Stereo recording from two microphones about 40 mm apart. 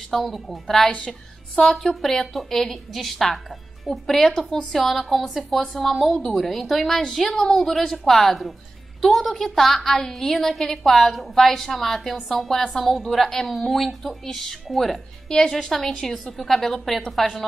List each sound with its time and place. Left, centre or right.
0.3 s a woman's voice: centre
15.2 s a woman's voice: centre
15.7 s a woman's voice: centre